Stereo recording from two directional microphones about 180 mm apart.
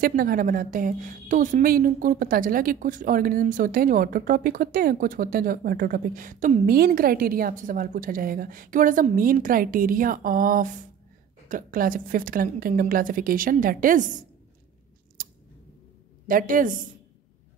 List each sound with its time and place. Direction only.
0.0 s a woman's voice: 55° right (ahead or behind)
15.2 s scissors: 50° right (ahead or behind)
16.3 s a woman's voice: 50° right (ahead or behind)